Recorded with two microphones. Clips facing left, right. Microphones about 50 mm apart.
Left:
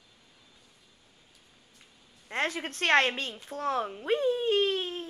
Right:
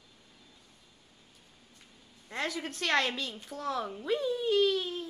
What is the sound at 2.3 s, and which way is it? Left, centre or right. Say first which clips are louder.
A child's voice: left 4 dB; left.